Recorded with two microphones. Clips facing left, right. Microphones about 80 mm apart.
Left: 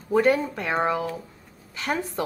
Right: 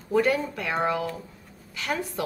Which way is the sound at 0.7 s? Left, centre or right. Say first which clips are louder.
Left 1 dB; centre.